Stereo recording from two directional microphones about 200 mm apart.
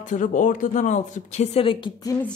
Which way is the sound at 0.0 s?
40° left (ahead or behind).